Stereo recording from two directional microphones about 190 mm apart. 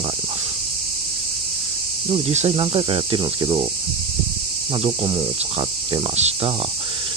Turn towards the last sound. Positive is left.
turn(degrees=-25)  # may be behind; listen again after turning